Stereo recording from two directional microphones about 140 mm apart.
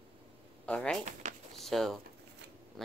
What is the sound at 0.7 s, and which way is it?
Speech, 5° left (ahead or behind).